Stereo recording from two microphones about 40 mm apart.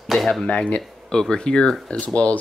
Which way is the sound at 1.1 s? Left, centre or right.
Centre.